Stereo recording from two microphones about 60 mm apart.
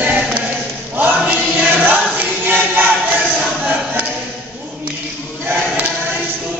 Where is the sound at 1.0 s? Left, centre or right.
Right.